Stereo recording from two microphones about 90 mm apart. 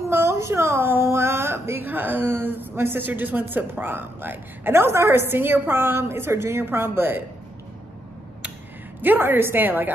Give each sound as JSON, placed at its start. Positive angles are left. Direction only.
{"t": 0.1, "sound": "speech", "side_deg": -30}
{"t": 9.0, "sound": "a woman's voice", "side_deg": -20}